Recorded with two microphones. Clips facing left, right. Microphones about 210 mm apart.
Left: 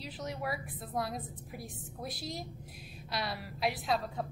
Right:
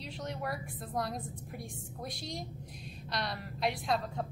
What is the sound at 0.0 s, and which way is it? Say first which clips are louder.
A woman's voice: even; centre (ahead or behind).